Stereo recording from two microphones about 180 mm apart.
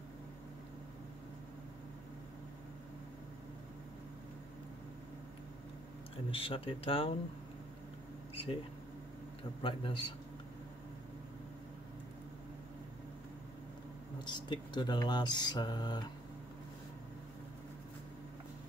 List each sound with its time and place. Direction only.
6.3 s speech: 30° left (ahead or behind)
9.4 s speech: 30° left (ahead or behind)
14.2 s speech: 25° left (ahead or behind)